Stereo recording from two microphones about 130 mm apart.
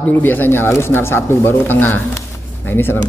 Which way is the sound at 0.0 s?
15° left (ahead or behind).